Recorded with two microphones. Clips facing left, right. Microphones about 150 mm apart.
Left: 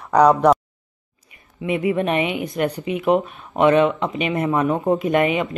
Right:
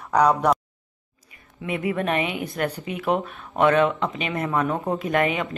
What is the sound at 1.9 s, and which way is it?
Speech, 20° left (ahead or behind).